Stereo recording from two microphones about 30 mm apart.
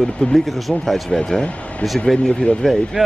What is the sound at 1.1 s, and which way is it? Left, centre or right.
Speech, left.